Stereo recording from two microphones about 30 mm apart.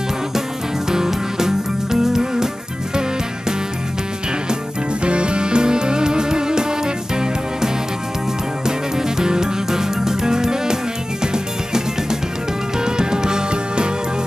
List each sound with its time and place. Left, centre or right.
0.8 s music: centre
5.0 s music: right
8.6 s music: right